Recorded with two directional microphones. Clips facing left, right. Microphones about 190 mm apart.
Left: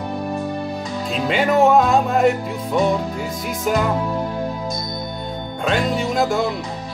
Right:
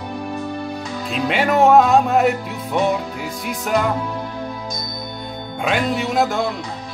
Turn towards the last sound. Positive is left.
turn(degrees=0)  # may be behind; listen again after turning